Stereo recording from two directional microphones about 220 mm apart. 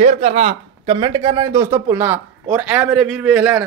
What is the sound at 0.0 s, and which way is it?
Speech, 30° right (ahead or behind).